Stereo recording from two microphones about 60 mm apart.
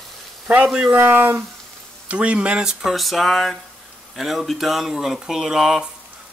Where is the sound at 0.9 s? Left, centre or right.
Right.